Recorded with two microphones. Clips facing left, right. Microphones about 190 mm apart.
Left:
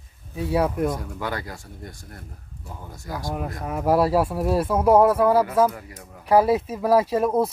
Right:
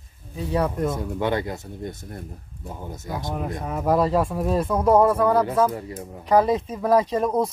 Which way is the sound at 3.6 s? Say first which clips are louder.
Left 1 dB; 5° left (ahead or behind).